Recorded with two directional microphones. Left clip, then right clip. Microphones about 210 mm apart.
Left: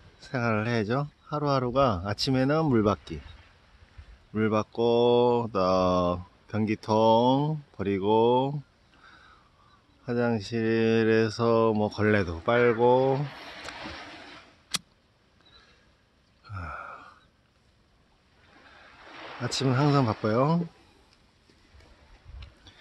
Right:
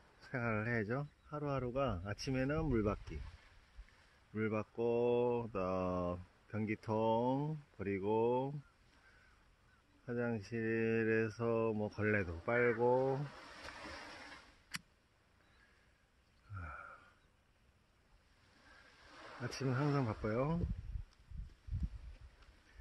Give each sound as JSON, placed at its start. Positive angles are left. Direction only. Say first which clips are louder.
{"t": 0.3, "sound": "speech", "louder": "left 11 dB", "side_deg": 10}
{"t": 1.7, "sound": "speech", "louder": "left 14 dB", "side_deg": 30}
{"t": 2.4, "sound": "speech", "louder": "left 13 dB", "side_deg": 20}
{"t": 4.3, "sound": "speech", "louder": "left 13 dB", "side_deg": 20}
{"t": 4.7, "sound": "speech", "louder": "left 12 dB", "side_deg": 30}
{"t": 6.0, "sound": "speech", "louder": "left 14 dB", "side_deg": 15}
{"t": 6.9, "sound": "speech", "louder": "left 14 dB", "side_deg": 30}
{"t": 7.7, "sound": "speech", "louder": "left 12 dB", "side_deg": 15}
{"t": 10.0, "sound": "speech", "louder": "left 12 dB", "side_deg": 15}
{"t": 11.7, "sound": "speech", "louder": "left 12 dB", "side_deg": 30}
{"t": 13.3, "sound": "a sound", "louder": "left 11 dB", "side_deg": -55}
{"t": 16.5, "sound": "gasp", "louder": "left 12 dB", "side_deg": 10}
{"t": 18.9, "sound": "a sound", "louder": "left 12 dB", "side_deg": -55}
{"t": 19.6, "sound": "speech", "louder": "left 13 dB", "side_deg": 15}